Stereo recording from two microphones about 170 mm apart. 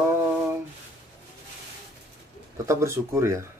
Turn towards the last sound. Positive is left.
turn(degrees=-15)  # may be behind; listen again after turning